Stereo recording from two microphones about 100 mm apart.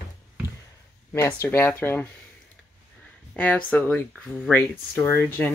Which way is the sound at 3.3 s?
15° left (ahead or behind).